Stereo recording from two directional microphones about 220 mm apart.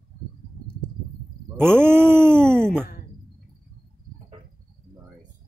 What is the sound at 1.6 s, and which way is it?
Groan, 10° right (ahead or behind).